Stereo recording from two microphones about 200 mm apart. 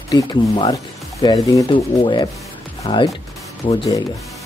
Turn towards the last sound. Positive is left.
turn(degrees=25)  # may be behind; listen again after turning